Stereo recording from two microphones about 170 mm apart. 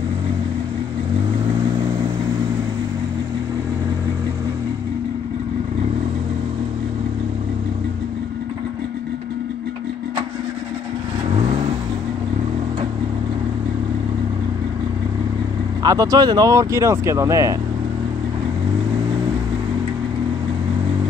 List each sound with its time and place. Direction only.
15.8 s speech: 20° right (ahead or behind)